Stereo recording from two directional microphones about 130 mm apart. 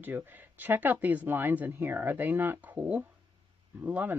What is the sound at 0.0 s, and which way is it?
Speech, 15° right (ahead or behind).